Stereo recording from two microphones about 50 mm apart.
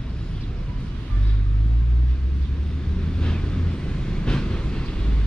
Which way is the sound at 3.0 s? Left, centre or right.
Centre.